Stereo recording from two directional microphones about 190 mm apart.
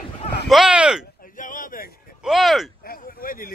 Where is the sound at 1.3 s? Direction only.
45° left (ahead or behind).